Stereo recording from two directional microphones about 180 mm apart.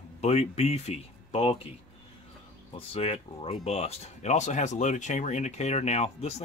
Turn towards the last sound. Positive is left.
turn(degrees=35)  # may be behind; listen again after turning